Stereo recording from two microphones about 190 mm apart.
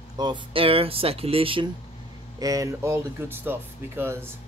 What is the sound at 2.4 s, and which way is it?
Speech, 20° right (ahead or behind).